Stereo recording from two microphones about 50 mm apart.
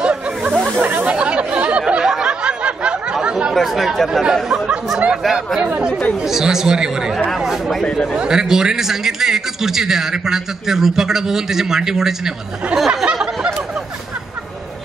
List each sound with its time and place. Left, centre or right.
0.0 s snake: right
0.6 s chatter: right
1.0 s chatter: right
1.8 s a sound: right
2.0 s a sound: centre
2.4 s snicker: right
3.2 s chatter: centre
3.5 s speech: centre
4.9 s speech: centre
5.6 s speech: right
6.2 s speech: centre
8.2 s speech: centre
12.7 s a sound: centre